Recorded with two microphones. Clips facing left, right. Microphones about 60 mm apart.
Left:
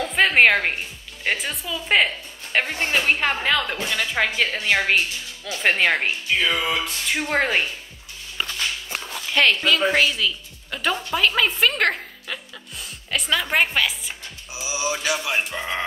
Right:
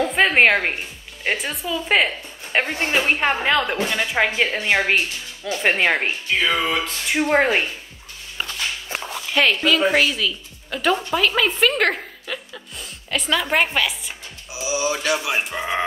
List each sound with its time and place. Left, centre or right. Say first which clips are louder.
0.0 s a sound: right 1 dB; centre
1.2 s a woman's voice: right 1 dB; centre
2.0 s speech: right 2 dB; centre
3.1 s speech: right 2 dB; centre
9.3 s a woman's voice: right 1 dB; centre